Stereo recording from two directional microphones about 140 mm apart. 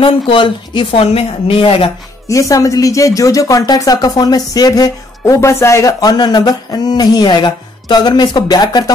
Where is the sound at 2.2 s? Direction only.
25° left (ahead or behind).